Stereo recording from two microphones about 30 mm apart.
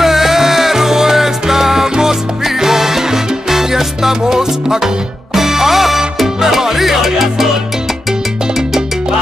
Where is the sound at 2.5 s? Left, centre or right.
Centre.